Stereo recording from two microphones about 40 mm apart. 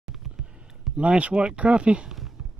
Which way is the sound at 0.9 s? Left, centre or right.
Right.